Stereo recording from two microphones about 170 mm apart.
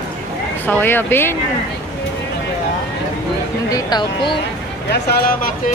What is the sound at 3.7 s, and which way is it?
Speech, 25° left (ahead or behind).